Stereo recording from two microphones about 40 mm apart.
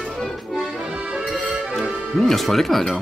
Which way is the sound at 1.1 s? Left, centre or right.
Centre.